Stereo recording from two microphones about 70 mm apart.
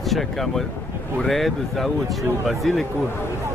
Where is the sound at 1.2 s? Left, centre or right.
Centre.